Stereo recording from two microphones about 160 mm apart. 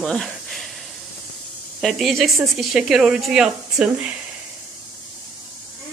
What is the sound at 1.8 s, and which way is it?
Speech, centre (ahead or behind).